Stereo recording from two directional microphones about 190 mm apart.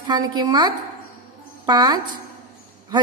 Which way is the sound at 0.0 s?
20° right (ahead or behind).